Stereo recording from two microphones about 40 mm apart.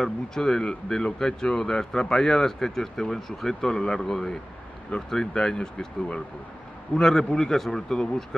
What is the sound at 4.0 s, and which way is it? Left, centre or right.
Speech, centre.